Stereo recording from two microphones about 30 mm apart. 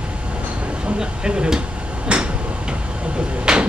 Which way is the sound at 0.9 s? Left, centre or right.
Right.